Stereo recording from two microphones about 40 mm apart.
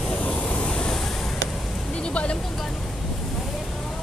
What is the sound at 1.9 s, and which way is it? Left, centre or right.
Vehicle, left.